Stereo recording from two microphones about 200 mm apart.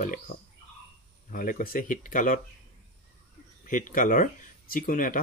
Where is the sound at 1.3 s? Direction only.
45° left (ahead or behind).